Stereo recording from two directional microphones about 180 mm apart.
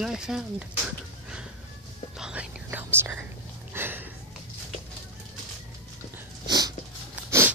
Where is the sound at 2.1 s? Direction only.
5° right (ahead or behind).